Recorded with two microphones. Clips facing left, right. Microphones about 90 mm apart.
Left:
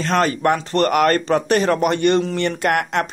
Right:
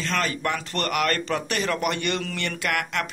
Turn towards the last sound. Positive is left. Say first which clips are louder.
# left 8 dB
turn(degrees=40)  # may be behind; listen again after turning